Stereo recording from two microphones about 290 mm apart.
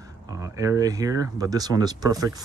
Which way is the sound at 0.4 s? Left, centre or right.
Centre.